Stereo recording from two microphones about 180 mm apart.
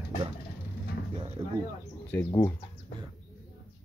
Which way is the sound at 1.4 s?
20° right (ahead or behind).